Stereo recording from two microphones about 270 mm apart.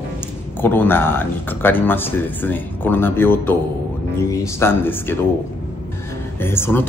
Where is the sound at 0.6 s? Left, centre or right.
Centre.